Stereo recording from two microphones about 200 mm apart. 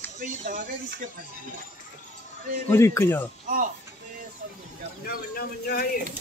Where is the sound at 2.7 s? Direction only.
15° left (ahead or behind).